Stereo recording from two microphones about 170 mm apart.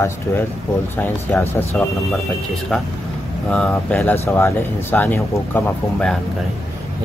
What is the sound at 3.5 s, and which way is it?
Speech, 5° left (ahead or behind).